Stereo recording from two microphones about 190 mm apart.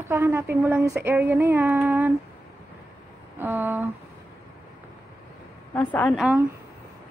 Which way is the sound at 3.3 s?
10° right (ahead or behind).